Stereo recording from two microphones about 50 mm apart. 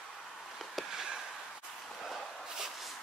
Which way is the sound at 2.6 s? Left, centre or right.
Centre.